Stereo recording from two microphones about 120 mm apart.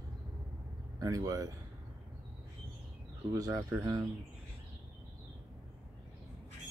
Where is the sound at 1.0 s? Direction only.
30° right (ahead or behind).